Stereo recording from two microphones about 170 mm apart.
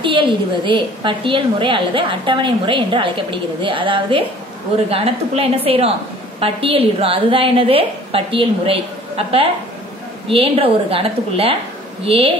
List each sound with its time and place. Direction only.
0.0 s a woman's voice: 30° right (ahead or behind)